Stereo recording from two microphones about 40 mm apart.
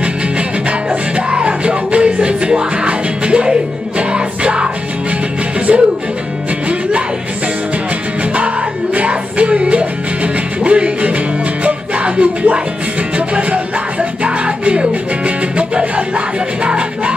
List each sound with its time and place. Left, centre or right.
0.7 s music: right
5.7 s music: right
8.9 s music: right